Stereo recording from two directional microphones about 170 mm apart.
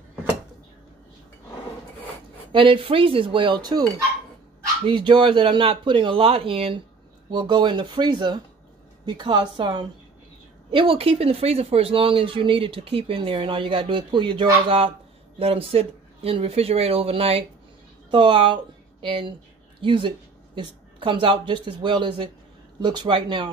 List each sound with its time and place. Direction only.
2.5 s a woman's voice: 30° right (ahead or behind)